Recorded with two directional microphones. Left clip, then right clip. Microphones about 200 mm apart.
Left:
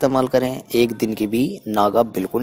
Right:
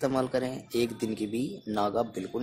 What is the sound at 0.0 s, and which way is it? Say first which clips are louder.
A man's voice: left 11 dB; 35° left (ahead or behind).